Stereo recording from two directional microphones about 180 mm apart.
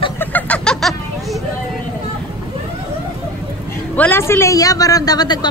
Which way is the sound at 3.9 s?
10° left (ahead or behind).